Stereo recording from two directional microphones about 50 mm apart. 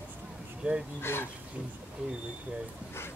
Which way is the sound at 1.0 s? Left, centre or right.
Left.